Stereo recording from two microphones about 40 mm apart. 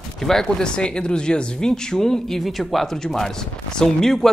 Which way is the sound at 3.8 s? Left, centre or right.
Centre.